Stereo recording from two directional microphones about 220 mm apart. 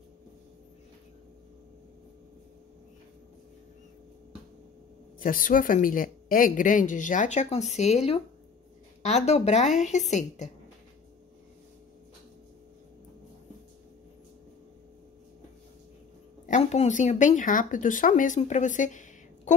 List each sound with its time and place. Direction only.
5.2 s a woman's voice: 40° left (ahead or behind)
16.4 s speech: 30° left (ahead or behind)